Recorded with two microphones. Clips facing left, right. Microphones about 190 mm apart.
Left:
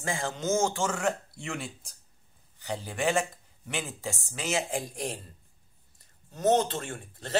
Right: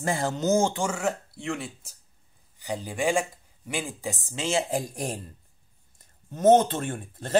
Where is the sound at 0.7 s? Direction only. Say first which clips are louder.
Right 1 dB; 10° right (ahead or behind).